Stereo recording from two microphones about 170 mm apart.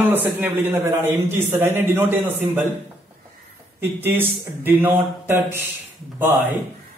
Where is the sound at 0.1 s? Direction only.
10° right (ahead or behind).